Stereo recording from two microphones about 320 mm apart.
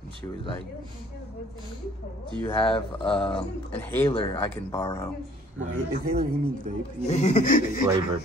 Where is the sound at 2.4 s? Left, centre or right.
Centre.